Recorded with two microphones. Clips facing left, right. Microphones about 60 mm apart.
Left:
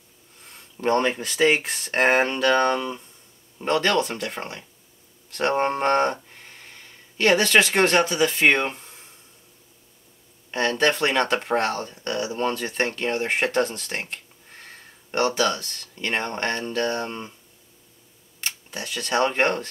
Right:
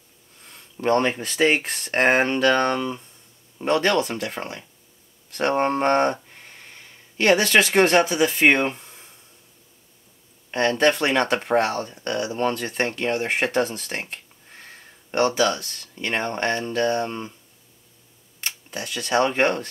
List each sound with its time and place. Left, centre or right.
0.5 s speech: centre
3.5 s speech: centre
5.4 s speech: centre
8.6 s a sound: centre
10.5 s speech: centre
13.5 s speech: centre
13.7 s a sound: centre
14.6 s speech: centre
16.6 s speech: centre
18.4 s speech: centre